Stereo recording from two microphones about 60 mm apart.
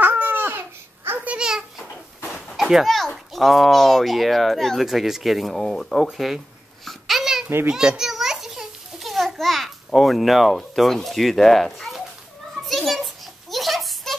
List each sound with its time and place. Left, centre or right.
0.0 s babbling: right
1.2 s babbling: centre
2.5 s speech: centre
6.0 s babbling: centre
7.7 s a sound: centre
10.8 s speech: centre
12.6 s a sound: centre